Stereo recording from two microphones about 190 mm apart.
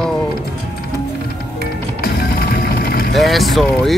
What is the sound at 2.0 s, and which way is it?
Music, 55° left (ahead or behind).